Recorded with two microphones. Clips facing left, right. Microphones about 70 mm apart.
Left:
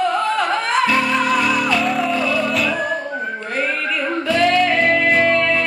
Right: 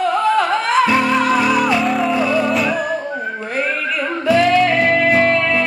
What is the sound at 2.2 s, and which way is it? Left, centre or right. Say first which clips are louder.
Music: right 3 dB; centre.